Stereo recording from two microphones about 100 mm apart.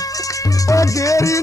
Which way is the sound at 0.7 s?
35° left (ahead or behind).